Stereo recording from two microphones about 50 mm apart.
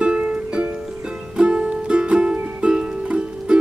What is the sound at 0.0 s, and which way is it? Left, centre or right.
Music, right.